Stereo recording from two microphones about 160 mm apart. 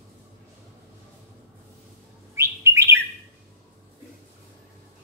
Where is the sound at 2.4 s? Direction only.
20° right (ahead or behind).